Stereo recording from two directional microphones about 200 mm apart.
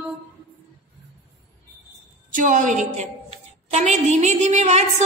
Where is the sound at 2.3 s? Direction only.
40° right (ahead or behind).